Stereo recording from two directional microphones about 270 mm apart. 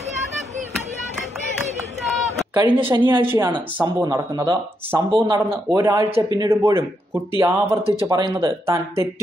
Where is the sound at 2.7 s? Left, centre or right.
Centre.